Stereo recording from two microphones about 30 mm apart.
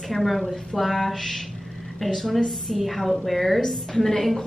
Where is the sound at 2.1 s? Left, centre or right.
Centre.